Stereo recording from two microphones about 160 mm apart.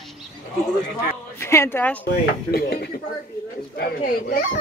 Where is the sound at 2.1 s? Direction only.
75° left (ahead or behind).